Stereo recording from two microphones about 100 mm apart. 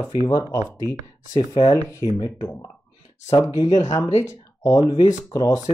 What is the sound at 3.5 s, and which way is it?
Speech, 40° left (ahead or behind).